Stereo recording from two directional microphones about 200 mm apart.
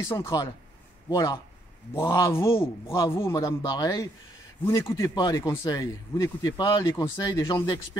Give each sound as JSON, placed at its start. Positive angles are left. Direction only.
{"t": 0.0, "sound": "a man's voice", "side_deg": 15}